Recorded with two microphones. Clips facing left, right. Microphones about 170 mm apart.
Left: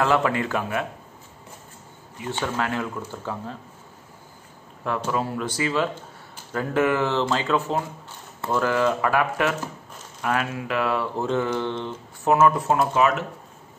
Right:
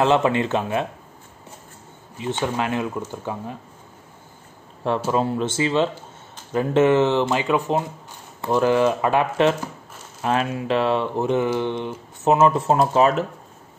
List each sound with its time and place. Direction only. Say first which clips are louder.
0.0 s speech: right 3 dB; 20° right (ahead or behind)
2.1 s speech: right 3 dB; 20° right (ahead or behind)
4.8 s speech: right 5 dB; 25° right (ahead or behind)